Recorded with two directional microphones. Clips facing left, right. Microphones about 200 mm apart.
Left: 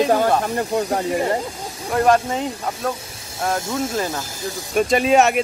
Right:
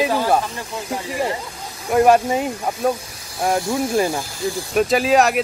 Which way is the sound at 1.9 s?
10° right (ahead or behind).